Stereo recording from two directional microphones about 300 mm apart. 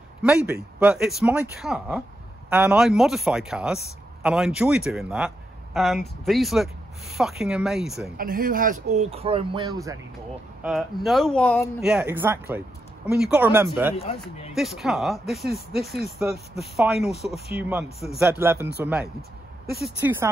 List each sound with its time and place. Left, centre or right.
0.2 s speech: centre
8.2 s speech: right; by 9.9 s centre
10.6 s speech: centre
13.9 s speech: left
14.5 s speech: centre
19.8 s speech: centre